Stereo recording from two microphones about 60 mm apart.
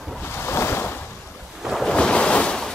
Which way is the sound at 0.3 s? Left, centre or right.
Left.